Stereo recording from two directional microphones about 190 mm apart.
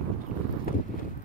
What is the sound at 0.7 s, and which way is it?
Wind, 50° left (ahead or behind).